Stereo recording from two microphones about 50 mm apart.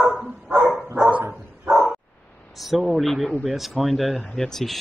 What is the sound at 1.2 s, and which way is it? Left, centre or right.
Dog, right.